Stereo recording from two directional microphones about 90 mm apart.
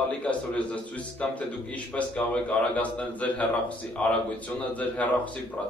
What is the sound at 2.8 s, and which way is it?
A man's voice, 15° left (ahead or behind).